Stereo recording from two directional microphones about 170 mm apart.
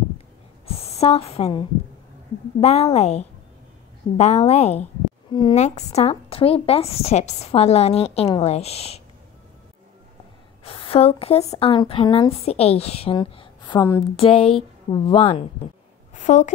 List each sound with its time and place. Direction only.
0.7 s a woman's voice: 35° left (ahead or behind)
10.6 s a woman's voice: 35° left (ahead or behind)
14.1 s a woman's voice: 35° left (ahead or behind)
16.1 s a sound: 45° left (ahead or behind)